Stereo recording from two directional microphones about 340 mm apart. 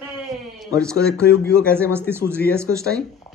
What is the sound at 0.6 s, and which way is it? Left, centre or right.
Speech, centre.